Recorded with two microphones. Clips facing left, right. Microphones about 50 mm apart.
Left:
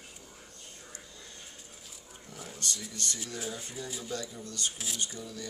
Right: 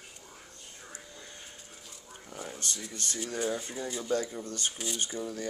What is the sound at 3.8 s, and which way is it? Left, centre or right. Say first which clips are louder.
Speech: right 6 dB; right.